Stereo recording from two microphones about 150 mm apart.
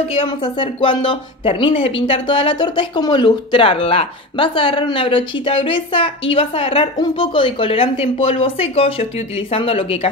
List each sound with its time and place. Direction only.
0.1 s speech: 35° left (ahead or behind)